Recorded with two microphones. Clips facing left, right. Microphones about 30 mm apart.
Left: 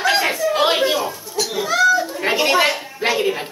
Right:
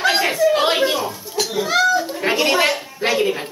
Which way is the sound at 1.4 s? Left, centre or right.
Right.